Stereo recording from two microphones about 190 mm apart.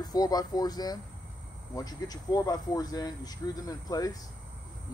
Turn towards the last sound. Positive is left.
turn(degrees=20)  # may be behind; listen again after turning